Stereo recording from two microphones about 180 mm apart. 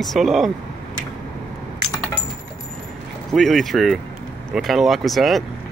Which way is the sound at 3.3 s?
Centre (ahead or behind).